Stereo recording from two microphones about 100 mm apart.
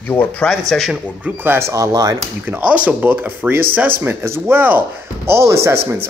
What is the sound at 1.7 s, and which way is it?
Speech, 35° right (ahead or behind).